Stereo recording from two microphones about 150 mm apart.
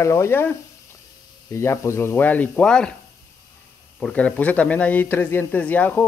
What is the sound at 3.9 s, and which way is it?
Speech, 10° left (ahead or behind).